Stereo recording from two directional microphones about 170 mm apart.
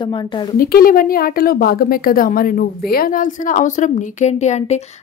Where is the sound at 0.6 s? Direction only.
55° left (ahead or behind).